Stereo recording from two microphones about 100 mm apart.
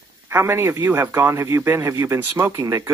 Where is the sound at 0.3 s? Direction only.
25° right (ahead or behind).